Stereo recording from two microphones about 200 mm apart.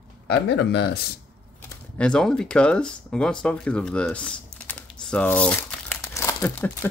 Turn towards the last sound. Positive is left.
turn(degrees=10)  # may be behind; listen again after turning